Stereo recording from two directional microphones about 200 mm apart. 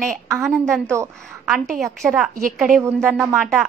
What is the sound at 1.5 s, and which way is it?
A woman's voice, centre (ahead or behind).